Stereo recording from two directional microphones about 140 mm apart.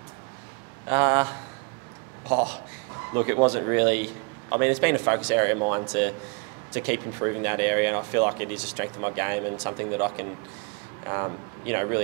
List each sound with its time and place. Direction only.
0.8 s a man's voice: 20° right (ahead or behind)